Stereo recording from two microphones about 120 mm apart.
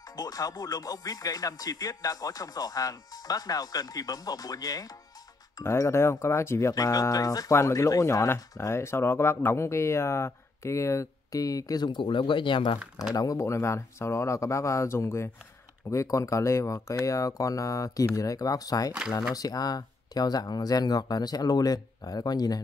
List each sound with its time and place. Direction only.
0.1 s music: 30° left (ahead or behind)
5.6 s speech: 25° left (ahead or behind); by 12.7 s 45° left (ahead or behind)
13.1 s speech: 30° left (ahead or behind)
19.3 s music: 30° left (ahead or behind)